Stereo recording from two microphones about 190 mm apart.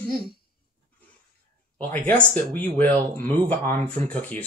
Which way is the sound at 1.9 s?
10° left (ahead or behind).